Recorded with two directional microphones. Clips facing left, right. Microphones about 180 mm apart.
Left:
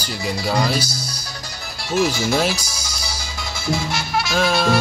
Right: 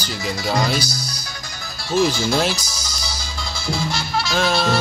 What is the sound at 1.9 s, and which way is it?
Speech, 5° left (ahead or behind).